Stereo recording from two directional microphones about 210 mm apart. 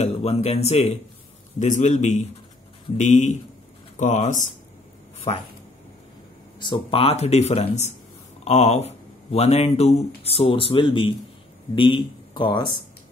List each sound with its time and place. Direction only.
0.0 s speech: 30° left (ahead or behind)
6.6 s speech: 25° left (ahead or behind)